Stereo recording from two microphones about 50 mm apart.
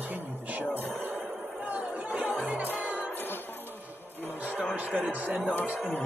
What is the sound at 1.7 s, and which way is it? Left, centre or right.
Chatter, right.